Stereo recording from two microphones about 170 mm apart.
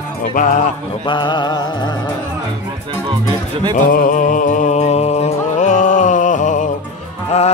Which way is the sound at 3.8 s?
50° left (ahead or behind).